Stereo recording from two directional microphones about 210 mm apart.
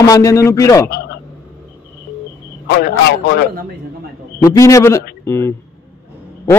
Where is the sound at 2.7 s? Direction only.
45° left (ahead or behind).